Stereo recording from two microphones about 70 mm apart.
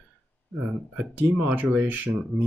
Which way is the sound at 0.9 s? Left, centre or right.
Right.